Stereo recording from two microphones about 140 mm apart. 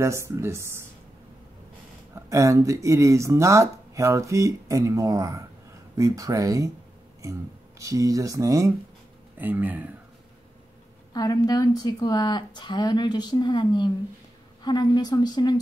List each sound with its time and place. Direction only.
0.0 s speech: 20° right (ahead or behind)
2.1 s speech: 20° right (ahead or behind)
7.8 s speech: 25° right (ahead or behind)
9.4 s speech: 15° right (ahead or behind)
11.1 s a woman's voice: 25° left (ahead or behind)